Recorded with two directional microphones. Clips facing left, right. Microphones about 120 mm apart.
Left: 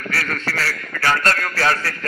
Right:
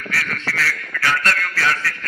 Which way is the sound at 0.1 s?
40° left (ahead or behind).